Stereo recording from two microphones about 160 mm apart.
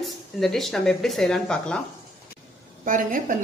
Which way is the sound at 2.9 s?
55° right (ahead or behind).